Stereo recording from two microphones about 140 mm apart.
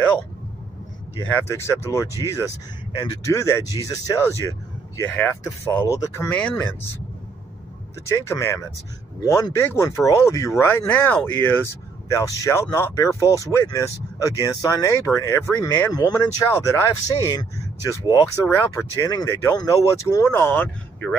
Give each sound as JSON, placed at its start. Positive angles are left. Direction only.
{"t": 1.3, "sound": "speech", "side_deg": 20}
{"t": 6.2, "sound": "speech", "side_deg": 10}
{"t": 8.1, "sound": "speech", "side_deg": 20}
{"t": 17.4, "sound": "speech", "side_deg": 30}
{"t": 18.5, "sound": "speech", "side_deg": 15}
{"t": 18.9, "sound": "speech", "side_deg": 25}